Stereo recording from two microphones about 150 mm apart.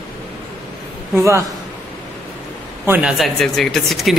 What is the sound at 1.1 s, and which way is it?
Speech, 20° right (ahead or behind).